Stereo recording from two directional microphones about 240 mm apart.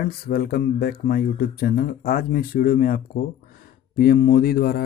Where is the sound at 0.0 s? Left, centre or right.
Left.